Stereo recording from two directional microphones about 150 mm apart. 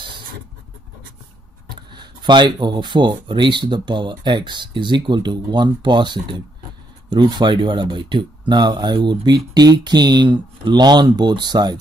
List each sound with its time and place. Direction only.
1.7 s speech: 30° right (ahead or behind)